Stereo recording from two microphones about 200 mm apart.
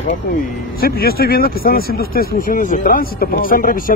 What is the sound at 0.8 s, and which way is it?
Speech, 50° left (ahead or behind).